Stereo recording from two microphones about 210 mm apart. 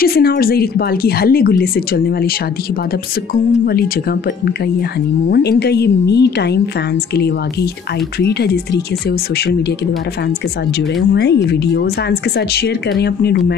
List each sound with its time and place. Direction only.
0.0 s a woman's voice: 45° left (ahead or behind)
5.3 s a woman's voice: 50° left (ahead or behind)
8.2 s a woman's voice: 50° left (ahead or behind)
11.4 s a woman's voice: 50° left (ahead or behind)